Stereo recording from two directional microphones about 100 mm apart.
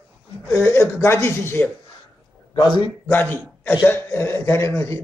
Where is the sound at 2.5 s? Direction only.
50° left (ahead or behind).